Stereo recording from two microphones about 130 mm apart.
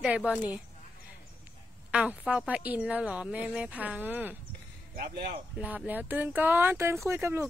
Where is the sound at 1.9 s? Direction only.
10° right (ahead or behind).